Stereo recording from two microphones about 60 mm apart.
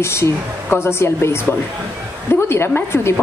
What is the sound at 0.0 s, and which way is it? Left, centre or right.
A woman's voice, left.